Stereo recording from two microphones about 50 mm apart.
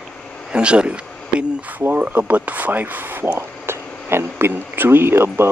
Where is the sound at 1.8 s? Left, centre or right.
Right.